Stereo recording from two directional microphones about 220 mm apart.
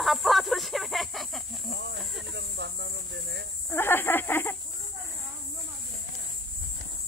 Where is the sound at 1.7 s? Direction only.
50° right (ahead or behind).